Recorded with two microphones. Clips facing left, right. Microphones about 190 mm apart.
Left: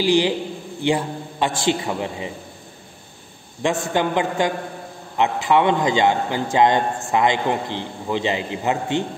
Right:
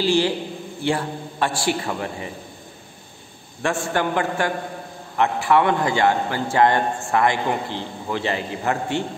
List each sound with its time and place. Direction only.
0.0 s a man's voice: 15° left (ahead or behind)
3.6 s a man's voice: 20° left (ahead or behind)